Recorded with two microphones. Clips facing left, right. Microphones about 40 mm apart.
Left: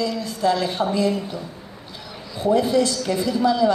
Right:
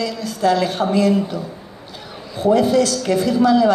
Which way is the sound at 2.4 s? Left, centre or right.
Right.